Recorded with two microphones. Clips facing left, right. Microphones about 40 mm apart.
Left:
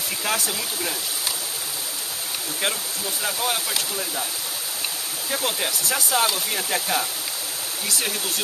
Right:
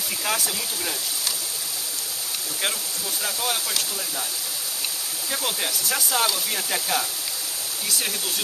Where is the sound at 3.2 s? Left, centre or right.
Centre.